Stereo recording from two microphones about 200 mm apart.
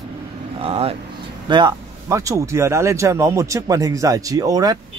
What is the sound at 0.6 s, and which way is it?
Speech, 30° right (ahead or behind).